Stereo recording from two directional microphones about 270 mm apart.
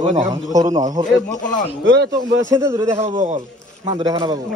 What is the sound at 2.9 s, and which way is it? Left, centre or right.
A man's voice, right.